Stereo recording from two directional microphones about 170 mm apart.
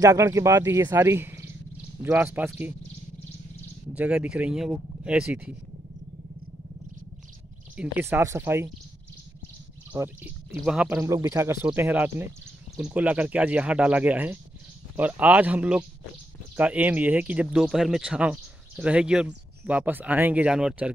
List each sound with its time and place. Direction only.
0.0 s speech: 20° right (ahead or behind)
3.9 s speech: 5° right (ahead or behind)
7.7 s speech: 10° right (ahead or behind)
9.9 s speech: 10° right (ahead or behind)
11.1 s speech: 20° right (ahead or behind)